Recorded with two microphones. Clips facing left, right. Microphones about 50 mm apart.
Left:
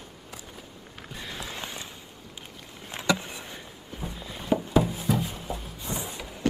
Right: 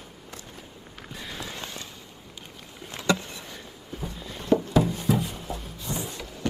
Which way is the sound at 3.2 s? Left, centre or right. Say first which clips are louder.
Left 1 dB; centre.